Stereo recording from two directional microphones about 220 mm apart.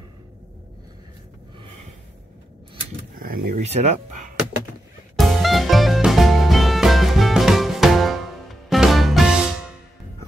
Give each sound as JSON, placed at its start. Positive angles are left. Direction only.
{"t": 3.2, "sound": "speech", "side_deg": -40}
{"t": 5.1, "sound": "music", "side_deg": 0}